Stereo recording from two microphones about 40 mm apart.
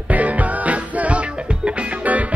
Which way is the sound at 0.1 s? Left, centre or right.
Right.